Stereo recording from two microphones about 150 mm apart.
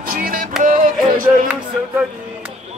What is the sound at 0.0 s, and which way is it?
Music, 75° right (ahead or behind).